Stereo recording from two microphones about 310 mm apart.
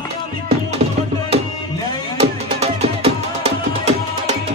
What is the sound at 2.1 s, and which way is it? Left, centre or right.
Music, centre.